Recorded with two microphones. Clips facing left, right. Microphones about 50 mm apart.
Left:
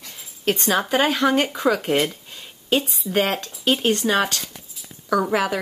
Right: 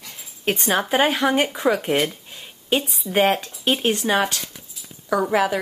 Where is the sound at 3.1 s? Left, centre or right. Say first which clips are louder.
Right 3 dB; centre.